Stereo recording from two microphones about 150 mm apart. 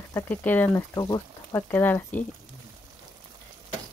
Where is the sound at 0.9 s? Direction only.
25° left (ahead or behind).